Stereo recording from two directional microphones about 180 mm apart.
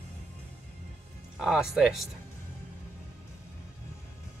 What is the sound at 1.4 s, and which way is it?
Speech, 5° right (ahead or behind).